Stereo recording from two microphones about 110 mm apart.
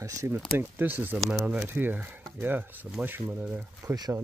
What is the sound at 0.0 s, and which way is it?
Speech, 30° right (ahead or behind).